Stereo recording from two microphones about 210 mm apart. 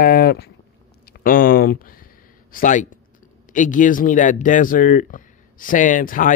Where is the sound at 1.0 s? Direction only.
40° left (ahead or behind).